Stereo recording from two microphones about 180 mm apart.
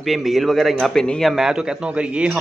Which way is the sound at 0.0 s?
Centre (ahead or behind).